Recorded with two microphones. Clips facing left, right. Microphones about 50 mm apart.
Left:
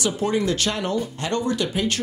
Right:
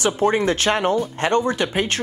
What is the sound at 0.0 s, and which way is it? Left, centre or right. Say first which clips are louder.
Speech: right 4 dB; right.